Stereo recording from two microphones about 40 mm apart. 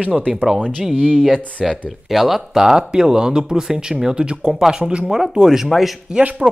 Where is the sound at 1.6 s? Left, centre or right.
Centre.